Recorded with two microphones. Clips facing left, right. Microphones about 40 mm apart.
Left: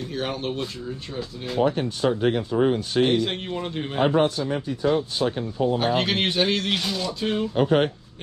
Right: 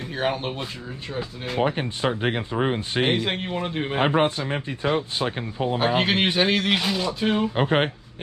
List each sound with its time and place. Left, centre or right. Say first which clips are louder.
0.1 s speech: right 3 dB; centre
5.8 s speech: right 1 dB; centre